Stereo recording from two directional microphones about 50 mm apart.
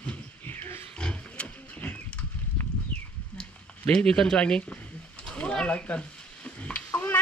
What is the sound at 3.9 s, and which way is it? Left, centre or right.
Speech, centre.